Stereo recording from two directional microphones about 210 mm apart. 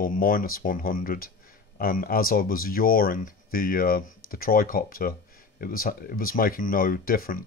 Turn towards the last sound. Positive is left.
turn(degrees=45)  # may be behind; listen again after turning